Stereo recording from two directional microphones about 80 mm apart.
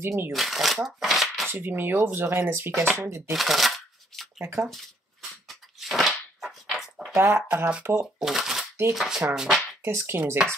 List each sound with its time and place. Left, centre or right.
0.0 s speech: right
0.3 s speech: centre
0.8 s shuffling cards: centre
1.5 s speech: right
3.3 s shuffling cards: centre
5.5 s a sound: centre
7.2 s speech: right
8.0 s speech: centre
9.8 s speech: right